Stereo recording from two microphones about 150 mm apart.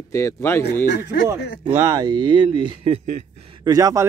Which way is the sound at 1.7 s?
20° right (ahead or behind).